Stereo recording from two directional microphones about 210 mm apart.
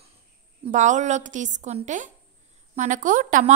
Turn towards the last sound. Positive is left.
turn(degrees=-40)  # may be behind; listen again after turning